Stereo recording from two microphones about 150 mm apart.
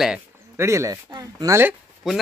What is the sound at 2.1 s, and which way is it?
Speech, 5° right (ahead or behind).